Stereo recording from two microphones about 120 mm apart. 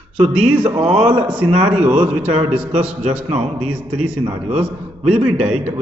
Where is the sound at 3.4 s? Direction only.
10° right (ahead or behind).